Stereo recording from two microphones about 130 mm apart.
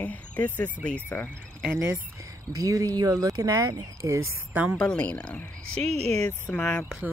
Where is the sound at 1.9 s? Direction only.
25° right (ahead or behind).